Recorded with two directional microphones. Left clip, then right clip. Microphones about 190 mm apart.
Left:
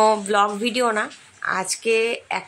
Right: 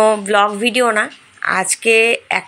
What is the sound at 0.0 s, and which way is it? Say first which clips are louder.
Speech: right 5 dB; 5° right (ahead or behind).